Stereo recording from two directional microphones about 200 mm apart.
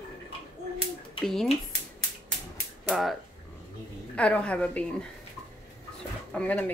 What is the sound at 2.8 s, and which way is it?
Speech, centre (ahead or behind).